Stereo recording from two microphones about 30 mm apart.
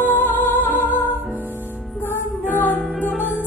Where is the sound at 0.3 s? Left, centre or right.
Left.